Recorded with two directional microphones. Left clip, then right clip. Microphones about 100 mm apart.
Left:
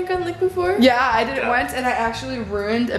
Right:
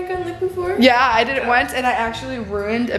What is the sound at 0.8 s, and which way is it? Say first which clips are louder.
A woman's voice: right 4 dB; 10° right (ahead or behind).